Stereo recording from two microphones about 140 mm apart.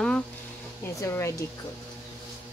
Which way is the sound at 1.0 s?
20° left (ahead or behind).